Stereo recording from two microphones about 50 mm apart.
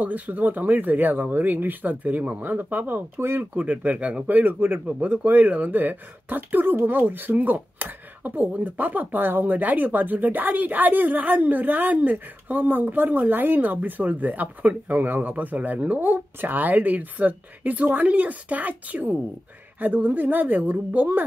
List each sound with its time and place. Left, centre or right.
0.0 s speech: right
3.2 s speech: right
3.5 s speech: right